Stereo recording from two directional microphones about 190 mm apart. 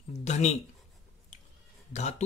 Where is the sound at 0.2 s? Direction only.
35° left (ahead or behind).